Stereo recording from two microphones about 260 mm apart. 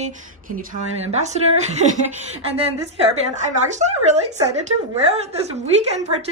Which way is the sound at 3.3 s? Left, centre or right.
Right.